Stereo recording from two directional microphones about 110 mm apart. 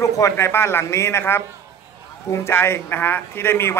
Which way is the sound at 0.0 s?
25° left (ahead or behind).